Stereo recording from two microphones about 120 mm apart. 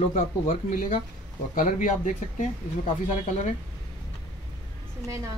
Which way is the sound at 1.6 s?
90° left.